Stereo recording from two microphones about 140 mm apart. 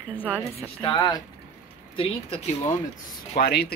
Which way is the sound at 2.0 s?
40° left (ahead or behind).